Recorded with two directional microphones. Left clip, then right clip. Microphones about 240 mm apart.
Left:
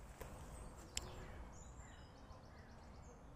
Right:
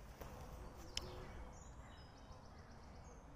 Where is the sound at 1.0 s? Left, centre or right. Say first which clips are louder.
Right 1 dB; centre.